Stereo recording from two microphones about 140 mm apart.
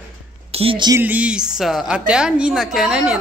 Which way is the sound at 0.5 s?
40° right (ahead or behind).